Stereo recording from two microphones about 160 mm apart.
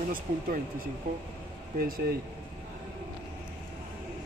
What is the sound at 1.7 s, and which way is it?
Speech, 60° right (ahead or behind).